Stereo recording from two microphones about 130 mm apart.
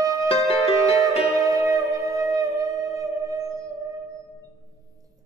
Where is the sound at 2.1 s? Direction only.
25° right (ahead or behind).